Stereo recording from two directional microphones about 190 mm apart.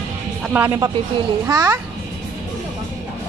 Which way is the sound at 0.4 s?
10° right (ahead or behind).